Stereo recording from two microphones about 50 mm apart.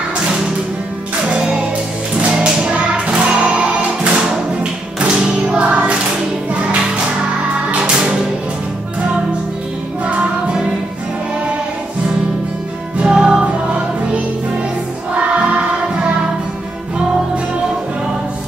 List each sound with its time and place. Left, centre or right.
1.3 s music: centre
10.0 s music: right
13.0 s music: centre
15.1 s music: right